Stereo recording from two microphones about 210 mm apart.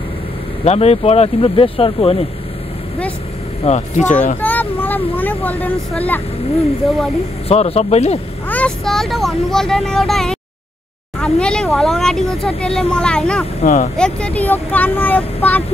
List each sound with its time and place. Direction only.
0.7 s speech: 30° left (ahead or behind)
3.6 s speech: 35° left (ahead or behind)
4.4 s speech: 10° left (ahead or behind)
7.4 s speech: 30° left (ahead or behind)
8.5 s speech: 5° left (ahead or behind)
13.6 s speech: 35° left (ahead or behind)
13.9 s speech: 5° left (ahead or behind)